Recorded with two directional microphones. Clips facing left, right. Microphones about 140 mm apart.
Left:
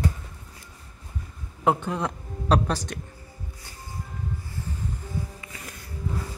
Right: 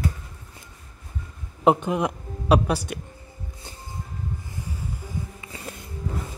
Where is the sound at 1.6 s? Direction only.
20° right (ahead or behind).